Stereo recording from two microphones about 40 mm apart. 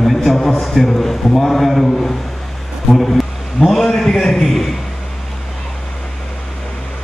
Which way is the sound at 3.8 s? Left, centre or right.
Centre.